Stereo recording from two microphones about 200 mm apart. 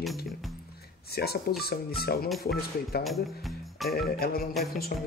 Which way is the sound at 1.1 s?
50° left (ahead or behind).